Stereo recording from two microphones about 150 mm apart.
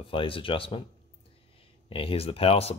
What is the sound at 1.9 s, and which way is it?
Speech, 40° left (ahead or behind).